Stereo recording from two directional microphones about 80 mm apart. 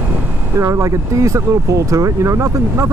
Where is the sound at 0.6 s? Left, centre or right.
Right.